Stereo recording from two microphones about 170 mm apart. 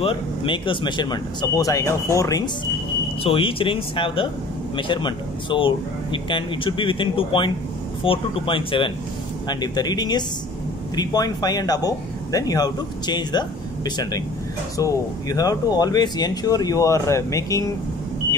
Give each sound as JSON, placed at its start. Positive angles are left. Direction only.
{"t": 0.0, "sound": "speech", "side_deg": 30}
{"t": 3.3, "sound": "speech", "side_deg": 30}